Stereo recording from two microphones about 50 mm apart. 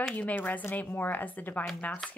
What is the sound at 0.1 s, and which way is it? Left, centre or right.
Speech, left.